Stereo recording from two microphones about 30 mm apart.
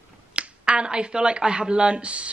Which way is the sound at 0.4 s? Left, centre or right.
Right.